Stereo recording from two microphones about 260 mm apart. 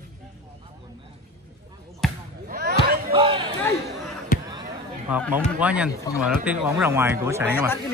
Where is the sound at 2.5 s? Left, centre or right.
Right.